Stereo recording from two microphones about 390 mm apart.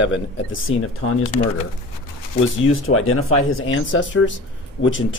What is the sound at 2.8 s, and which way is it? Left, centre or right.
Speech, left.